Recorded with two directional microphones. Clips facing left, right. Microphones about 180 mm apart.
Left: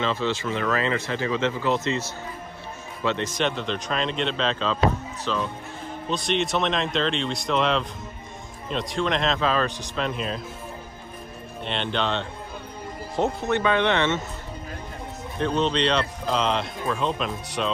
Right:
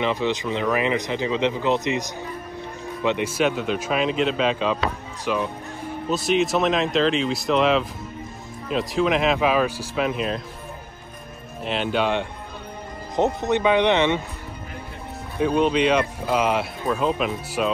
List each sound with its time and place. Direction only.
0.0 s speech: 15° right (ahead or behind)
11.6 s speech: 5° right (ahead or behind)
15.3 s speech: 10° right (ahead or behind)